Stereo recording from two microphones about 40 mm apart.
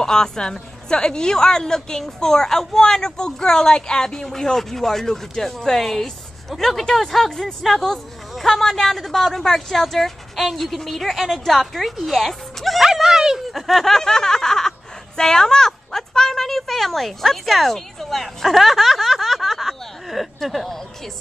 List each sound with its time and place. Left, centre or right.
0.0 s a woman's voice: centre
12.8 s a sound: centre
13.5 s a woman's voice: centre